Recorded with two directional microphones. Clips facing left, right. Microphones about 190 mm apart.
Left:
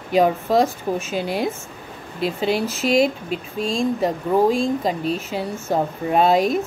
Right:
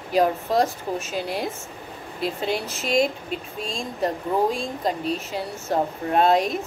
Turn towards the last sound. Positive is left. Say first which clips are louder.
# left 3 dB
turn(degrees=0)  # may be behind; listen again after turning